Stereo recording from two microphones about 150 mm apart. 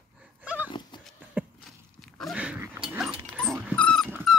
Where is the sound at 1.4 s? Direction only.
10° right (ahead or behind).